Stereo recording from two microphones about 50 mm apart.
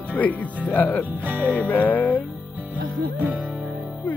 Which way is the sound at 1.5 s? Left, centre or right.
Left.